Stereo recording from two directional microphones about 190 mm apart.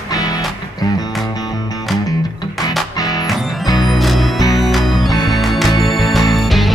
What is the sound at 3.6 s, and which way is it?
Music, 20° left (ahead or behind).